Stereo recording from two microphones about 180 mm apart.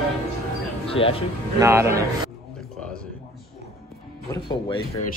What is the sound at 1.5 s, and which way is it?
Speech, 15° right (ahead or behind).